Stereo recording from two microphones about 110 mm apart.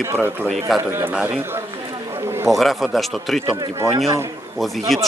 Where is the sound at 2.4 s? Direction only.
Centre (ahead or behind).